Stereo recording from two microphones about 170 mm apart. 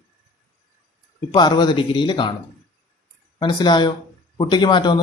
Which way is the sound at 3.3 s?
25° left (ahead or behind).